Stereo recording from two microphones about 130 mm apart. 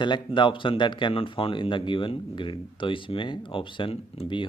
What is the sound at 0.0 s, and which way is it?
Speech, 35° left (ahead or behind).